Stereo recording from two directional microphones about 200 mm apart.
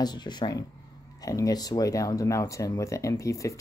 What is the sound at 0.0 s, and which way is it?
Speech, 20° left (ahead or behind).